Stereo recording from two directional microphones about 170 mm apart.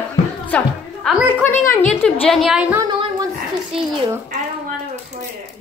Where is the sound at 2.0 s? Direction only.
Centre (ahead or behind).